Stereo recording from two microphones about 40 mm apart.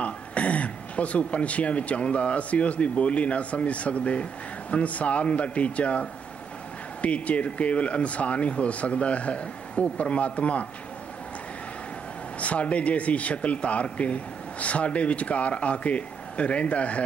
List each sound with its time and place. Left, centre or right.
0.0 s a man's voice: left
12.4 s a man's voice: left